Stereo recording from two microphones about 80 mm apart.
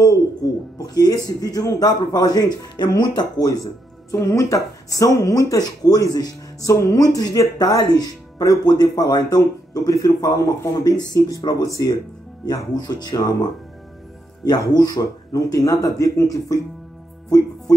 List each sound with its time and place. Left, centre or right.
0.1 s speech: left
4.1 s speech: left
9.4 s speech: left
12.4 s speech: left
14.7 s speech: left